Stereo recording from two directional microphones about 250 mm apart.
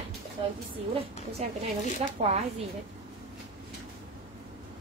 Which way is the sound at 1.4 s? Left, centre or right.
Right.